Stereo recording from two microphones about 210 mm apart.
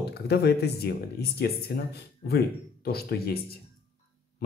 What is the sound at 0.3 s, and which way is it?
Speech, 50° left (ahead or behind).